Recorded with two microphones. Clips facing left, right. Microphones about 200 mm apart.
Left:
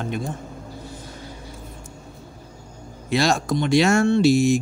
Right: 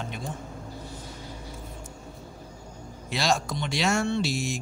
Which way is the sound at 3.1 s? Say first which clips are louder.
Left 7 dB; 50° left (ahead or behind).